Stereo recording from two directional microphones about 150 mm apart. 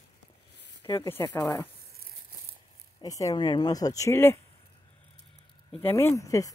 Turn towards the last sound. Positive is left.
turn(degrees=20)  # may be behind; listen again after turning